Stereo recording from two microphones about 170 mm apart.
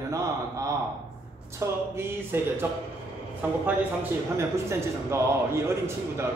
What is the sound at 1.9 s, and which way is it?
Speech, 15° right (ahead or behind).